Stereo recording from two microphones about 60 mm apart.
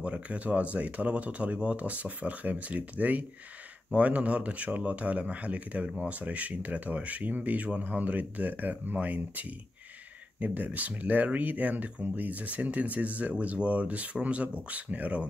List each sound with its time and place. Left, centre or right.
0.0 s speech: right